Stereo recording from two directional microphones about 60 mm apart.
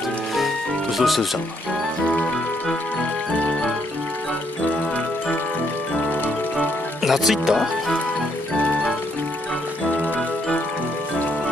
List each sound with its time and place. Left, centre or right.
0.9 s speech: centre
3.0 s jingle: left
6.2 s music: left
7.0 s speech: centre